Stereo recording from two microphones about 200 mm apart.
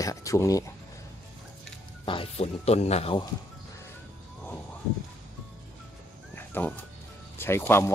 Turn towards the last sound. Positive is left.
turn(degrees=10)  # may be behind; listen again after turning